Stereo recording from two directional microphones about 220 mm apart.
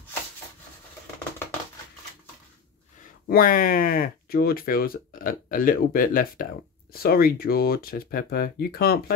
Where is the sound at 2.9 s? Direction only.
40° left (ahead or behind).